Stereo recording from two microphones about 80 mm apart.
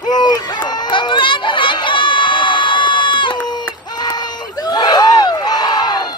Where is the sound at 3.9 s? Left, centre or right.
Left.